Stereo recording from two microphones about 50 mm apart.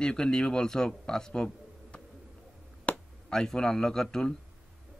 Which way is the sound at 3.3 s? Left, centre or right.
Centre.